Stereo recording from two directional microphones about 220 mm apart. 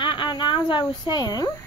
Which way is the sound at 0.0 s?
20° left (ahead or behind).